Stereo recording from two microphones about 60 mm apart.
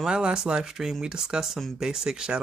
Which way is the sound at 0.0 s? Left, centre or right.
Centre.